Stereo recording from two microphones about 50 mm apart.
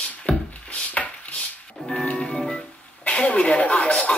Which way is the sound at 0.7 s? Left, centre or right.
Left.